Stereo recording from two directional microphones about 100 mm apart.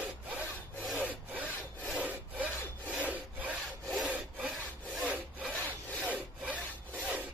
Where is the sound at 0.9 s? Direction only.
15° right (ahead or behind).